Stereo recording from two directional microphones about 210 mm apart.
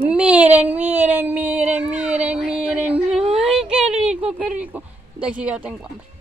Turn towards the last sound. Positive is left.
turn(degrees=-5)  # may be behind; listen again after turning